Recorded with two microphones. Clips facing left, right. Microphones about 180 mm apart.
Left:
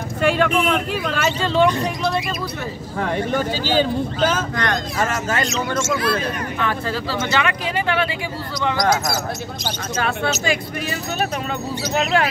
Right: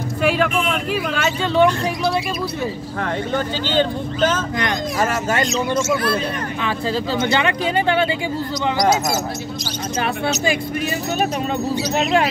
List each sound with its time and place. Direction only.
0.2 s speech: 5° right (ahead or behind)
3.0 s speech: 10° left (ahead or behind)
6.6 s speech: 20° right (ahead or behind)
12.0 s speech: 20° right (ahead or behind)